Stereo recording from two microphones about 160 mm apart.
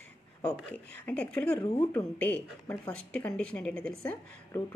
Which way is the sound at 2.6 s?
10° left (ahead or behind).